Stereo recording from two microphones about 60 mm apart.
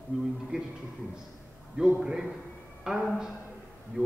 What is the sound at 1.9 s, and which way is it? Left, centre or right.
Speech, centre.